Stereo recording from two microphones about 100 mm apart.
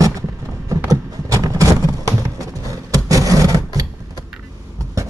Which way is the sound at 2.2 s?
35° right (ahead or behind).